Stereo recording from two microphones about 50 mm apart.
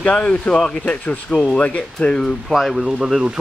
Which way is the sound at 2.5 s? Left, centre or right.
Centre.